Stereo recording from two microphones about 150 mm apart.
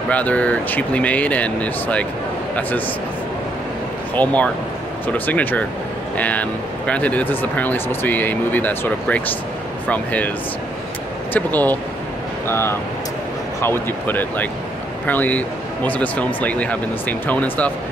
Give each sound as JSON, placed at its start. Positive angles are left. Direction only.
{"t": 0.1, "sound": "speech", "side_deg": 10}
{"t": 4.1, "sound": "speech", "side_deg": 10}
{"t": 11.3, "sound": "speech", "side_deg": 10}